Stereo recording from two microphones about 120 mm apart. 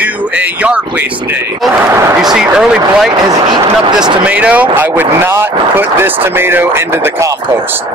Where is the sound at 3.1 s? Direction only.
35° right (ahead or behind).